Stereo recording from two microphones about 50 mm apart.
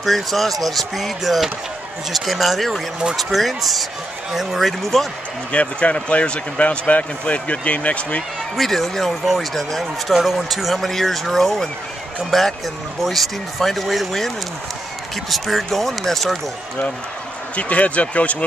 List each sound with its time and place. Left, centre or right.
0.0 s speech: centre
5.5 s speech: left
8.5 s speech: centre
17.6 s speech: left